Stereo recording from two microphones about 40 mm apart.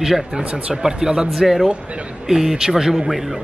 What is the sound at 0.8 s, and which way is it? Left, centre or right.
Speech, centre.